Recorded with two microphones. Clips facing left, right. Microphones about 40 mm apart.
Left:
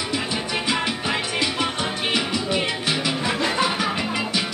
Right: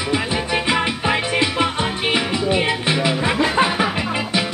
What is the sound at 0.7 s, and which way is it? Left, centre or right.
Music, right.